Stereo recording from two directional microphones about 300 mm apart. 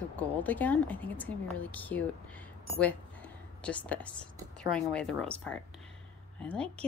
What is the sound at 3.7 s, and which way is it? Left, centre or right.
Speech, centre.